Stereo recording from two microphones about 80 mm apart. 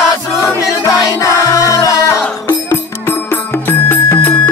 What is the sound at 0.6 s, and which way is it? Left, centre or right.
Music, left.